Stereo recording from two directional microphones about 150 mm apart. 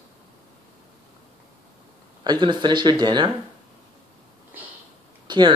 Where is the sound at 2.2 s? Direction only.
30° right (ahead or behind).